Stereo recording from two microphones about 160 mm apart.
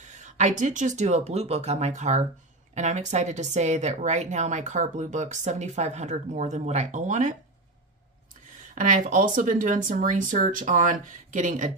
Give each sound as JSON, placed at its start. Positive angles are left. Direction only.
{"t": 0.0, "sound": "speech", "side_deg": -50}
{"t": 8.7, "sound": "speech", "side_deg": -55}